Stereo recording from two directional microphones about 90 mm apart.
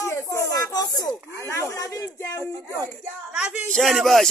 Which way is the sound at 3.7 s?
5° left (ahead or behind).